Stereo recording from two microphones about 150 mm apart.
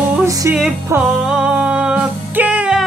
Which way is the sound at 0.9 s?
5° right (ahead or behind).